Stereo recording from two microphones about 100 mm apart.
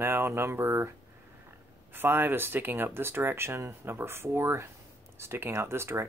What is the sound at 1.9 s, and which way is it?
Speech, 20° right (ahead or behind).